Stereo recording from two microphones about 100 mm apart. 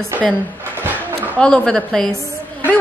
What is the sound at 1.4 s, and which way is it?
Speech, 10° left (ahead or behind).